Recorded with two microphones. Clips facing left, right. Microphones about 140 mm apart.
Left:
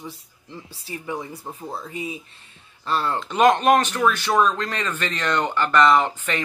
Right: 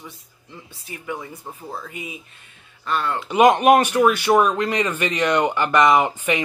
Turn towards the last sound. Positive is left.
turn(degrees=-10)  # may be behind; listen again after turning